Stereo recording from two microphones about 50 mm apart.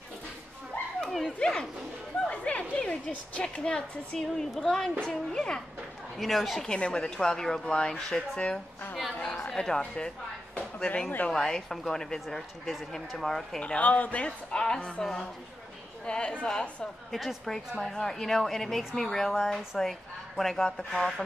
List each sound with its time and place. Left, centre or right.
1.1 s dog: centre
2.2 s a sound: left
3.4 s speech: centre
4.2 s speech: centre
6.1 s a woman's voice: centre
6.6 s a woman's voice: centre
13.6 s a man's voice: left
14.2 s speech: centre
17.1 s a woman's voice: centre